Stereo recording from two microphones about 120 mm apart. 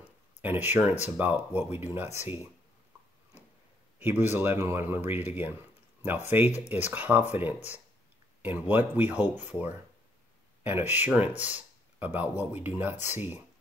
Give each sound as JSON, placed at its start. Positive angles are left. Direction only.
{"t": 0.4, "sound": "speech", "side_deg": -15}
{"t": 4.0, "sound": "speech", "side_deg": -15}